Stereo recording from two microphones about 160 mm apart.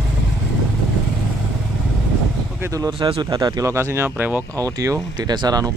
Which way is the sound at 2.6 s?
20° right (ahead or behind).